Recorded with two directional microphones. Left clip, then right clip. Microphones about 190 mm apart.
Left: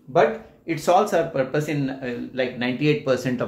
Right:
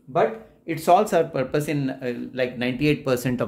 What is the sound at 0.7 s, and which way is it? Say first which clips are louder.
Speech: right 1 dB; 45° right (ahead or behind).